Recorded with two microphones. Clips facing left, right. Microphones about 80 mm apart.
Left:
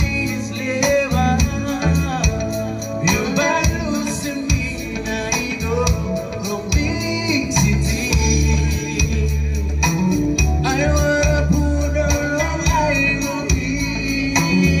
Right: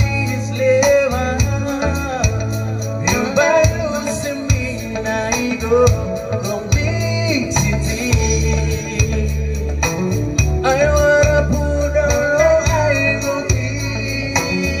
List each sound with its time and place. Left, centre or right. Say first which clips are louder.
0.7 s music: right 1 dB; right
3.1 s music: right 4 dB; right
5.3 s music: right 6 dB; right
7.5 s music: even; right
10.6 s music: right 7 dB; right
14.3 s organ: left 2 dB; centre